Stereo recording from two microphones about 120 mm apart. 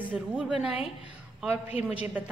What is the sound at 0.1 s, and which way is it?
A woman's voice, 10° right (ahead or behind).